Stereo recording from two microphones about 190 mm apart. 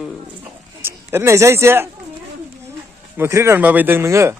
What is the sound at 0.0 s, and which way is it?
Speech, 5° right (ahead or behind).